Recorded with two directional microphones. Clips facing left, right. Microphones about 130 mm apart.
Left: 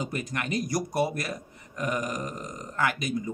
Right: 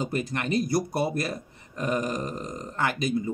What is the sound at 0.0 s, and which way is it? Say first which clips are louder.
Speech: right 3 dB; 30° right (ahead or behind).